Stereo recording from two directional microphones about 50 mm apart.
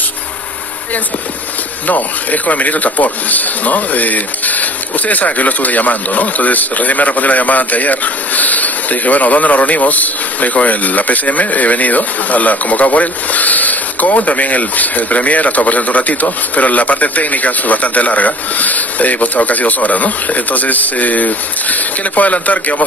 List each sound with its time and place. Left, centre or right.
1.9 s speech: left